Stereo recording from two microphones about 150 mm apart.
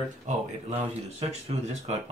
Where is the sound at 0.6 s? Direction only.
45° right (ahead or behind).